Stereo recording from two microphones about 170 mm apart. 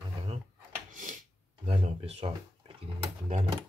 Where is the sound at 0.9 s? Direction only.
50° right (ahead or behind).